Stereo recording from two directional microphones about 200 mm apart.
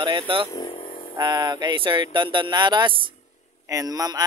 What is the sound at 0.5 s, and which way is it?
Vehicle, 20° left (ahead or behind).